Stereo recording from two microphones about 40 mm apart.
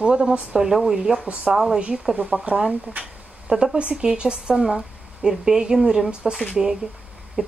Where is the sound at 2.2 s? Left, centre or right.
Right.